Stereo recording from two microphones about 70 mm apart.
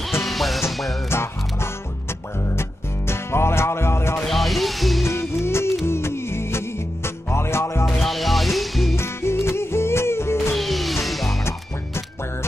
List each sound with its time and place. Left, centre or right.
0.2 s music: centre
1.1 s music: left
3.1 s music: left
4.2 s music: centre
5.0 s music: left
7.8 s music: centre
8.9 s music: left
10.5 s music: centre